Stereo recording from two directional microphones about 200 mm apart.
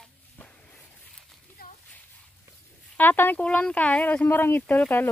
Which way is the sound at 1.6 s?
50° left (ahead or behind).